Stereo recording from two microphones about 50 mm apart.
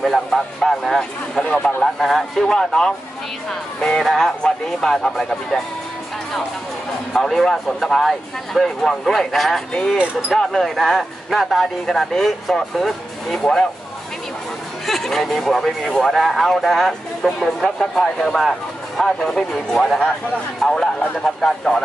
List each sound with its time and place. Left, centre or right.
0.0 s speech: centre
4.0 s speech: centre
7.2 s speech: centre
9.9 s speech: right
10.4 s speech: centre
14.9 s speech: centre